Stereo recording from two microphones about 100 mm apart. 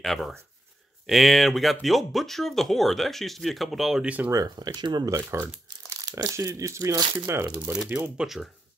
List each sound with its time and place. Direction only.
0.0 s speech: centre (ahead or behind)
4.3 s speech: 35° right (ahead or behind)
5.1 s speech: 25° right (ahead or behind)
5.9 s speech: 35° right (ahead or behind)
8.2 s speech: centre (ahead or behind)